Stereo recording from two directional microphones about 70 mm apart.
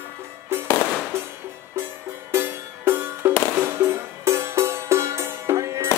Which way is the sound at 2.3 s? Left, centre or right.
Right.